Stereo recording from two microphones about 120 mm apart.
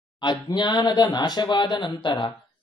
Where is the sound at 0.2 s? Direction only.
40° left (ahead or behind).